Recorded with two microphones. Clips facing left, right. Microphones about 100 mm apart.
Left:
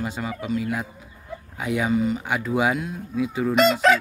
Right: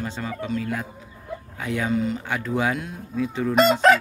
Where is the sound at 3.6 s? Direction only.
40° right (ahead or behind).